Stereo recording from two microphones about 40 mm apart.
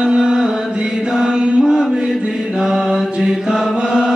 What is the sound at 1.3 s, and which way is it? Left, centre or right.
Chant, right.